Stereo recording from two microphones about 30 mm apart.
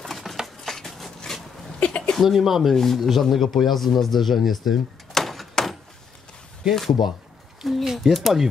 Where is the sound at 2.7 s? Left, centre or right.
Centre.